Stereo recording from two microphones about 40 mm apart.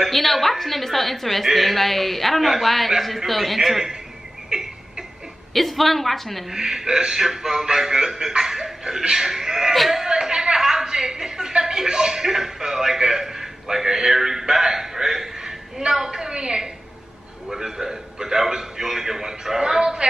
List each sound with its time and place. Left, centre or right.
0.1 s a woman's voice: centre
4.5 s a sound: centre
5.5 s a woman's voice: centre
6.5 s a woman's voice: centre
14.5 s a sound: centre
15.9 s speech: centre